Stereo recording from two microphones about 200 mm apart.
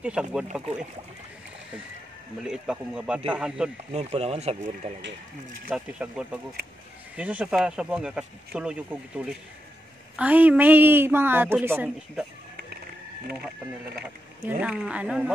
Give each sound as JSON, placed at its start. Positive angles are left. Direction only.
{"t": 0.0, "sound": "speech", "side_deg": -5}
{"t": 2.4, "sound": "speech", "side_deg": -5}
{"t": 3.9, "sound": "speech", "side_deg": -30}
{"t": 5.7, "sound": "a woman's voice", "side_deg": -5}
{"t": 14.6, "sound": "speech", "side_deg": -5}